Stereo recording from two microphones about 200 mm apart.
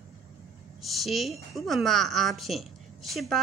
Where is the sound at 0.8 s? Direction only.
Centre (ahead or behind).